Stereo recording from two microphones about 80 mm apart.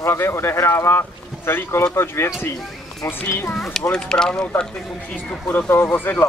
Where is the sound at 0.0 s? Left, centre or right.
Left.